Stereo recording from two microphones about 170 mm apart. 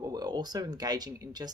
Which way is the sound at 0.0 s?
25° right (ahead or behind).